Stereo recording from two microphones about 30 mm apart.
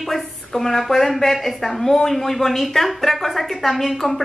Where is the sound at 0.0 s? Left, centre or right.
Centre.